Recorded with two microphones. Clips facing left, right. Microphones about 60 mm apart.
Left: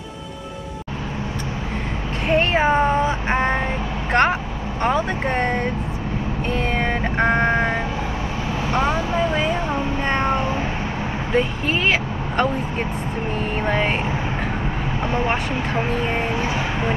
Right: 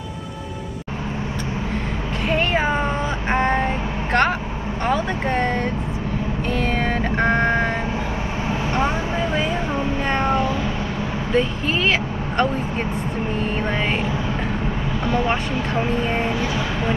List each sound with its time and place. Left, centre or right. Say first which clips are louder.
2.2 s child singing: left 3 dB; centre
4.1 s vehicle: left 1 dB; left
4.8 s speech: left 1 dB; left
6.5 s music: even; left
8.5 s vehicle: left 1 dB; right
9.3 s vehicle: left 1 dB; left
10.0 s cat: right 1 dB; left
11.3 s speech: even; left
13.7 s speech: left 5 dB; centre
15.0 s speech: right 1 dB; left